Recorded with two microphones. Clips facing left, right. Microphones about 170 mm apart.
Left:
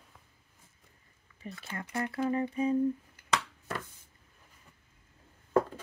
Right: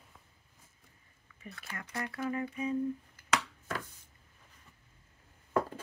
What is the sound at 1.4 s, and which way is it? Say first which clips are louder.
Speech: left 5 dB; 30° left (ahead or behind).